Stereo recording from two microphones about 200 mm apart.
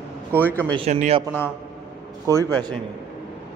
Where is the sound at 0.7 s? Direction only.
35° right (ahead or behind).